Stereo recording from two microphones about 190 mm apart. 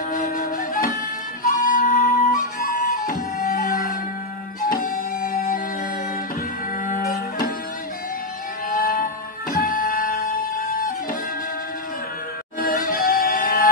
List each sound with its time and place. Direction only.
0.1 s music: 45° left (ahead or behind)
6.9 s music: 45° left (ahead or behind)
8.6 s music: 45° left (ahead or behind)
12.5 s music: 45° left (ahead or behind)